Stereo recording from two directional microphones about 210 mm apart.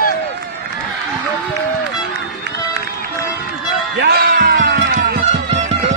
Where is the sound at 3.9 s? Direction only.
50° right (ahead or behind).